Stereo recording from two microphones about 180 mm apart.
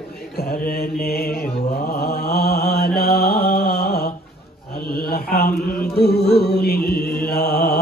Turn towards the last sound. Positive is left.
turn(degrees=60)  # may be behind; listen again after turning